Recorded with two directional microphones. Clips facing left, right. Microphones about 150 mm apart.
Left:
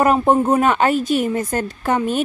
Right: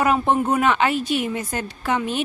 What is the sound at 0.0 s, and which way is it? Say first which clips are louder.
A woman's voice: left 4 dB; 40° left (ahead or behind).